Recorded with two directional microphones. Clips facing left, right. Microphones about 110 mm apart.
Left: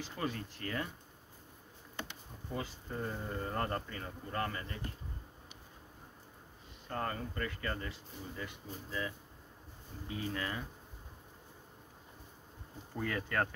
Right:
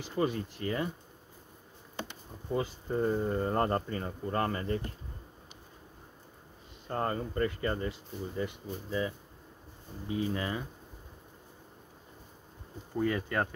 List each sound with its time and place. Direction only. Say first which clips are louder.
0.0 s speech: right 8 dB; 15° right (ahead or behind)
2.5 s speech: right 9 dB; 25° right (ahead or behind)
6.9 s speech: right 6 dB; 30° right (ahead or behind)
10.0 s speech: right 6 dB; 20° right (ahead or behind)
12.9 s speech: right 5 dB; 10° right (ahead or behind)